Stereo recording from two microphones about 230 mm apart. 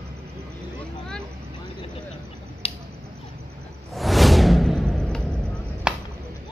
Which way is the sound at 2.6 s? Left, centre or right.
Left.